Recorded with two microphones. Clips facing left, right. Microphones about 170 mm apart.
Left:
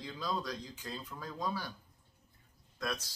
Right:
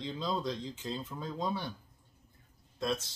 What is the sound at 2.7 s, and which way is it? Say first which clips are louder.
Speech: right 5 dB; 25° right (ahead or behind).